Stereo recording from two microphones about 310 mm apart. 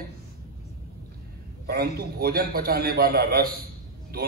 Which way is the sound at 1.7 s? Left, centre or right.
Right.